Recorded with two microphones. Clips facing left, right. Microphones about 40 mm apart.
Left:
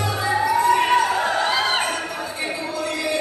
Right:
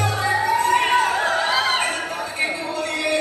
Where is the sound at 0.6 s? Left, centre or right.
Right.